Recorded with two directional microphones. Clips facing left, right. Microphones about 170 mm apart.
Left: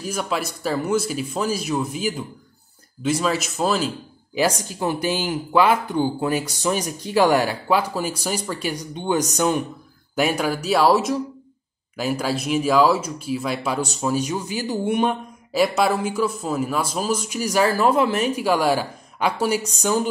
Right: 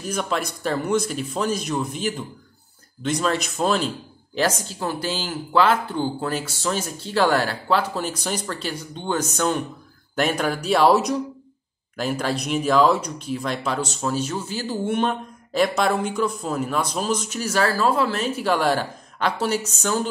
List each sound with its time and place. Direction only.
0.0 s speech: 5° left (ahead or behind)
4.6 s speech: 15° left (ahead or behind)